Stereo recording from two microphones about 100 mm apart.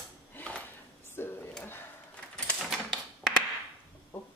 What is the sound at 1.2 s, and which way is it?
Drawer open or close, 25° left (ahead or behind).